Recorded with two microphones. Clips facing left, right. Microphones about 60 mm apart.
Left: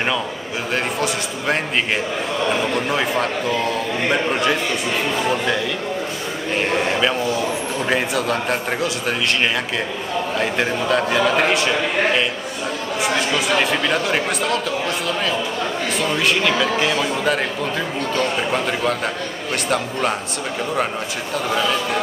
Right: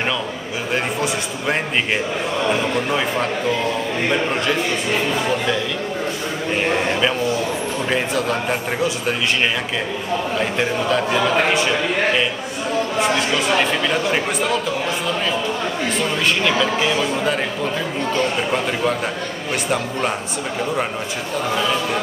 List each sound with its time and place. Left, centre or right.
2.9 s a man's voice: centre
7.9 s speech: centre
10.4 s speech: centre
13.0 s speech: centre
16.3 s a man's voice: centre